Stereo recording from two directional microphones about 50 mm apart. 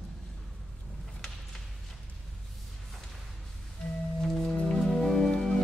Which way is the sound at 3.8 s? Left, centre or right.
Centre.